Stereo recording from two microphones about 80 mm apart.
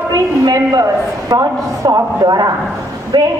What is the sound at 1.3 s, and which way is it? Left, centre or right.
A woman's voice, right.